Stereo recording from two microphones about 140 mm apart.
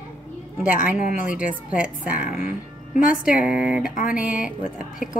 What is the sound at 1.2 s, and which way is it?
Speech, 70° left (ahead or behind).